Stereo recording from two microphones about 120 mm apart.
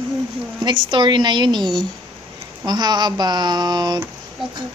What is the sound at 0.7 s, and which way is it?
Speech, 40° right (ahead or behind).